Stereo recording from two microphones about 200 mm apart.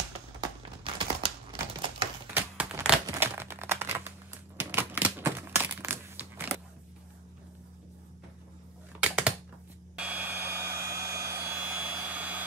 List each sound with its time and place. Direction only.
0.4 s typing: 25° right (ahead or behind)
2.3 s crumpling: 5° right (ahead or behind)
4.6 s a sound: 10° right (ahead or behind)
9.0 s typing: 5° right (ahead or behind)
9.9 s hair dryer: 5° right (ahead or behind)